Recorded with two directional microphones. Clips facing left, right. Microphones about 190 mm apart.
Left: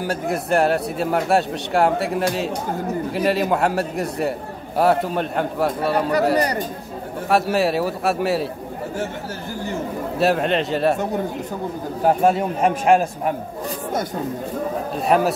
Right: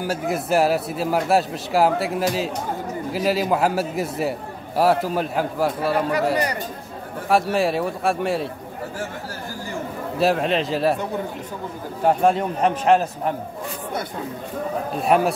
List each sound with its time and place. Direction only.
0.0 s a man's voice: centre (ahead or behind)
6.3 s speech: 35° left (ahead or behind)
7.2 s a man's voice: centre (ahead or behind)
10.1 s a man's voice: centre (ahead or behind)
12.0 s a man's voice: 5° left (ahead or behind)
15.0 s a man's voice: centre (ahead or behind)